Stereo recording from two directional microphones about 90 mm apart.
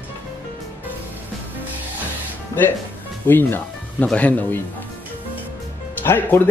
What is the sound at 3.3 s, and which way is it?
Speech, 25° left (ahead or behind).